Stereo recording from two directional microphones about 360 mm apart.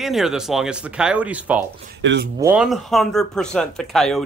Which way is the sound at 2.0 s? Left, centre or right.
Right.